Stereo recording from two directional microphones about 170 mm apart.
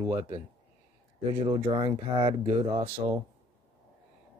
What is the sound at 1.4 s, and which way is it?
Speech, 30° right (ahead or behind).